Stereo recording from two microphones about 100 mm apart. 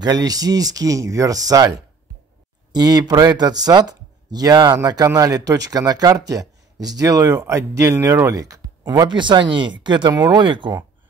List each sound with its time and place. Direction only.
0.0 s speech: 40° right (ahead or behind)
2.7 s speech: 40° right (ahead or behind)